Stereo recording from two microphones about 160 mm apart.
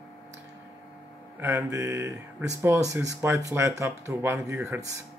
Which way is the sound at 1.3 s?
20° right (ahead or behind).